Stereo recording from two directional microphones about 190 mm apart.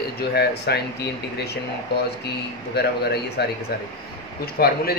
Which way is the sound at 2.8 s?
60° left (ahead or behind).